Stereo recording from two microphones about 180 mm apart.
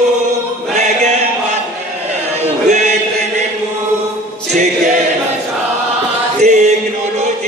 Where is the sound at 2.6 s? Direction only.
40° right (ahead or behind).